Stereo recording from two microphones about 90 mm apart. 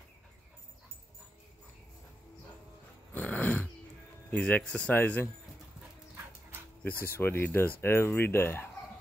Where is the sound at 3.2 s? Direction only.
15° left (ahead or behind).